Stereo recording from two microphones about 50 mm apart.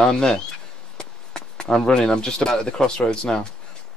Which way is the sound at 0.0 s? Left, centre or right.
Centre.